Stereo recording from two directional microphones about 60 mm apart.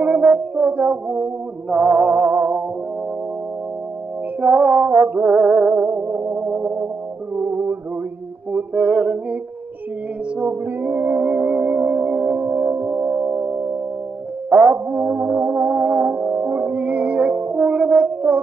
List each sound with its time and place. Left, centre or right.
0.0 s music: right
4.4 s music: centre
8.5 s a sound: right
10.4 s music: right
14.5 s music: right